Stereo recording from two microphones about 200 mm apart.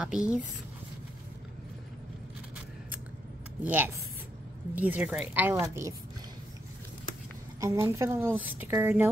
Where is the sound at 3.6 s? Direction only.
10° right (ahead or behind).